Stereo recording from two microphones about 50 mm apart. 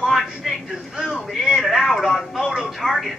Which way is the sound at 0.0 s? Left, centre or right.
Centre.